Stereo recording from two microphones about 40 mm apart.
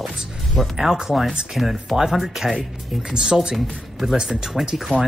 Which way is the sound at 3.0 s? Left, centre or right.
Right.